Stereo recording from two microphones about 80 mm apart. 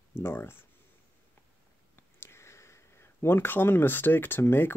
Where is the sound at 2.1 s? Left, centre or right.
Left.